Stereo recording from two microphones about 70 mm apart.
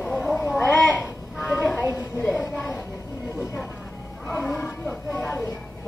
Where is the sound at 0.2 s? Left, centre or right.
Centre.